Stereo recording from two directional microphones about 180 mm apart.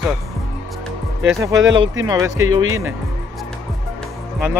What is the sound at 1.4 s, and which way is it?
Speech, 20° right (ahead or behind).